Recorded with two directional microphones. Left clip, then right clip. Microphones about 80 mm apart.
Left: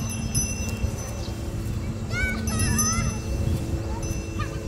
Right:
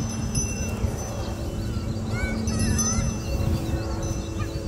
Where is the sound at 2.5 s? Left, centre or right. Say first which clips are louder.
Even; left.